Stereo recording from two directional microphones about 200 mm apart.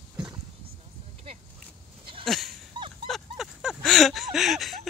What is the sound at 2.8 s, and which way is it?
Dog, 25° right (ahead or behind).